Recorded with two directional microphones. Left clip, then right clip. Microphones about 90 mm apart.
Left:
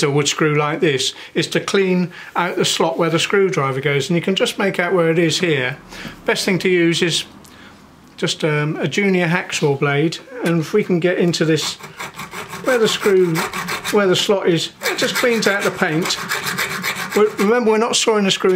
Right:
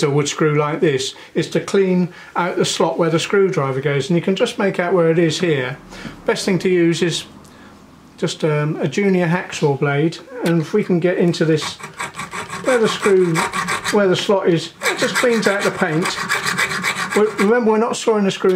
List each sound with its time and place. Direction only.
0.0 s speech: 15° left (ahead or behind)
12.0 s sawing: 10° right (ahead or behind)
13.0 s filing: 5° right (ahead or behind)
13.9 s speech: 20° left (ahead or behind)
15.8 s speech: 20° left (ahead or behind)
16.2 s filing: 10° right (ahead or behind)
17.5 s speech: 20° left (ahead or behind)